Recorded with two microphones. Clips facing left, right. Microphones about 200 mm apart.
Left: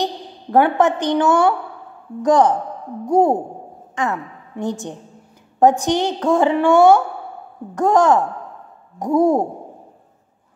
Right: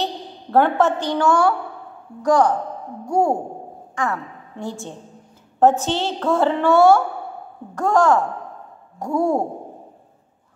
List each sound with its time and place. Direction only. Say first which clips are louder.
0.0 s a woman's voice: left 2 dB; 15° left (ahead or behind)